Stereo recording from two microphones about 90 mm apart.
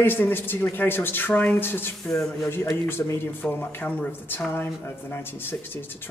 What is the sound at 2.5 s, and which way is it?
Speech, 25° left (ahead or behind).